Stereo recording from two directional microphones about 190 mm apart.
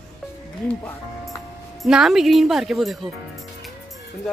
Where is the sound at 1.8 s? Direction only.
Centre (ahead or behind).